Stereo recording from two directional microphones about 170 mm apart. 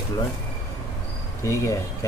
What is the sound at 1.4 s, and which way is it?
Speech, 15° left (ahead or behind).